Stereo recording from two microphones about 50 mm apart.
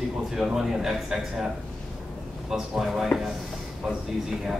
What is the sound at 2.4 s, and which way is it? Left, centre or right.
Speech, centre.